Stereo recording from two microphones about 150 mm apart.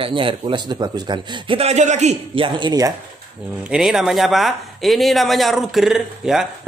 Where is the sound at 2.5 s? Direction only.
30° right (ahead or behind).